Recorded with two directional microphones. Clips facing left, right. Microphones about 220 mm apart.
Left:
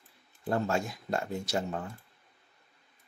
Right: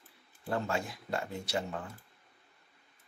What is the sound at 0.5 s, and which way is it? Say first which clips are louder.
Speech: left 4 dB; 45° left (ahead or behind).